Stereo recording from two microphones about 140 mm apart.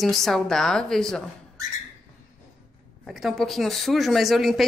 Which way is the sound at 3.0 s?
Centre (ahead or behind).